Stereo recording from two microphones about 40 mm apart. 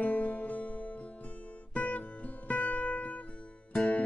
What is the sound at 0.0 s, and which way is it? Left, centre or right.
Music, left.